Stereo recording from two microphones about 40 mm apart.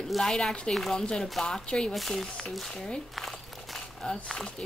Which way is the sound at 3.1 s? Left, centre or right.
Centre.